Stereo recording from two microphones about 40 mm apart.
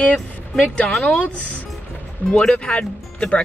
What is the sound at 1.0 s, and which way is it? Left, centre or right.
Speech, left.